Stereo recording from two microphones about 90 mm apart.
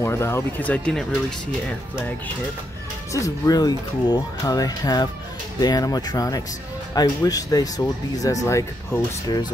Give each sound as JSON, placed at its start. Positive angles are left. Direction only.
{"t": 0.0, "sound": "speech", "side_deg": 30}
{"t": 0.6, "sound": "speech", "side_deg": 15}
{"t": 3.1, "sound": "speech", "side_deg": 40}